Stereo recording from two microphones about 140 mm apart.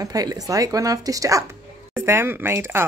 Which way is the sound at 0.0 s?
25° right (ahead or behind).